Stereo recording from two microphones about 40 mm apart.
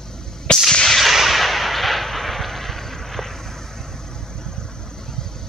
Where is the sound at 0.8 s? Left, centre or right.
Centre.